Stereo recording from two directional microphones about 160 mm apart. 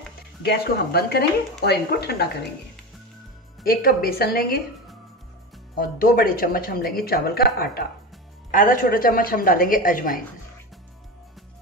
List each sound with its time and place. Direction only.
0.4 s speech: 85° left
3.6 s a woman's voice: 70° left (ahead or behind)
5.8 s a woman's voice: 60° left (ahead or behind)
8.5 s a woman's voice: 55° left (ahead or behind)